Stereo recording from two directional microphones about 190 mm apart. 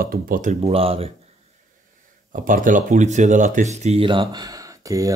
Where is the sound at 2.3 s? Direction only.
45° right (ahead or behind).